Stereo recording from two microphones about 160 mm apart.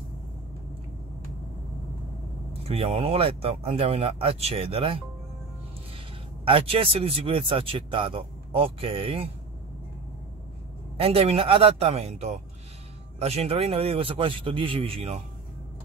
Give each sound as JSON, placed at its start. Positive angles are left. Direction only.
{"t": 2.7, "sound": "speech", "side_deg": -40}
{"t": 6.4, "sound": "speech", "side_deg": -35}
{"t": 11.0, "sound": "speech", "side_deg": -40}